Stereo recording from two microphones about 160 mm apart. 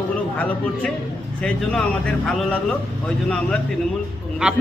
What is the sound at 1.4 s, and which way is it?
Speech, 5° left (ahead or behind).